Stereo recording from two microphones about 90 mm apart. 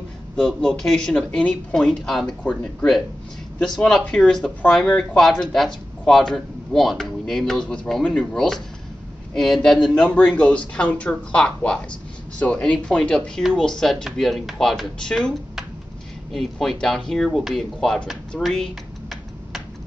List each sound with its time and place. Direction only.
0.4 s speech: 10° left (ahead or behind)
3.6 s speech: 5° left (ahead or behind)
18.4 s computer keyboard: centre (ahead or behind)